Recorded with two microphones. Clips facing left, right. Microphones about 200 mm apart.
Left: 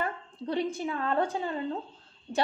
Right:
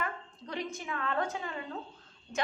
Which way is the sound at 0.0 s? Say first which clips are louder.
Left 5 dB; 30° left (ahead or behind).